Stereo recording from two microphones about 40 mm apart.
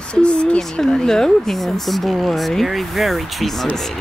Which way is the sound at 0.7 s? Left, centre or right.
Centre.